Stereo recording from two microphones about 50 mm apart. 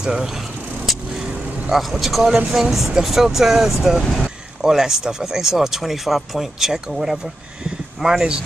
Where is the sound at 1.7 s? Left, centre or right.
Centre.